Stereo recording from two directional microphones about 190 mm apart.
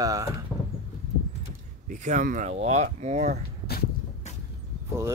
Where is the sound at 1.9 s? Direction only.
40° right (ahead or behind).